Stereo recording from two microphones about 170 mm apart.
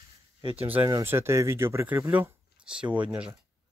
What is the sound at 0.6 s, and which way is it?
Speech, 10° right (ahead or behind).